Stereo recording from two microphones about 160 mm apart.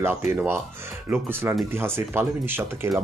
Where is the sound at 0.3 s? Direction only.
15° right (ahead or behind).